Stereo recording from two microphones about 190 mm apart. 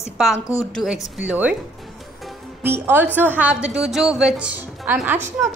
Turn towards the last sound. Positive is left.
turn(degrees=-10)  # may be behind; listen again after turning